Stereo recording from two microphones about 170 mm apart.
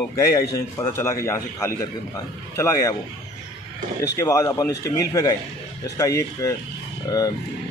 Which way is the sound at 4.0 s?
20° left (ahead or behind).